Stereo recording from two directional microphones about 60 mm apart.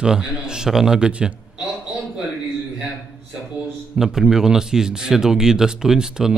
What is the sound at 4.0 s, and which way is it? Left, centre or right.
Speech, centre.